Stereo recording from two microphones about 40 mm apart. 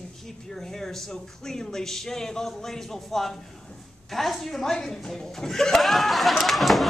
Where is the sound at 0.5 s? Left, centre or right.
Centre.